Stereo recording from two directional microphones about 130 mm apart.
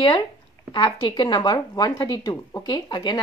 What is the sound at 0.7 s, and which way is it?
Speech, 35° left (ahead or behind).